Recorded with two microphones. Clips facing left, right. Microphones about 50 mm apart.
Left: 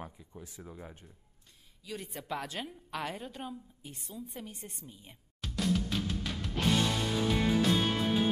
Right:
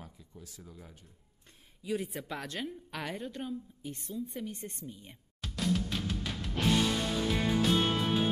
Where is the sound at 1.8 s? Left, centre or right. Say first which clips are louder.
Right 6 dB; centre.